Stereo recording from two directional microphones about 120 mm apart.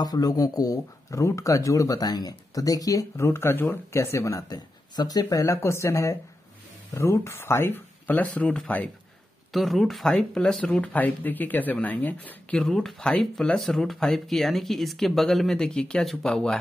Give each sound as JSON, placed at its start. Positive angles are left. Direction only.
{"t": 0.0, "sound": "speech", "side_deg": 30}